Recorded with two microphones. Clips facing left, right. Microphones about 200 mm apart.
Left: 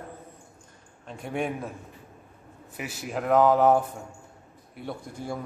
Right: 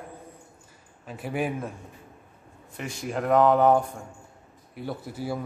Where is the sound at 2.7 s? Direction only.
5° left (ahead or behind).